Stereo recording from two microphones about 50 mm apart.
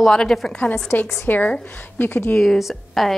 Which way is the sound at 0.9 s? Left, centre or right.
Left.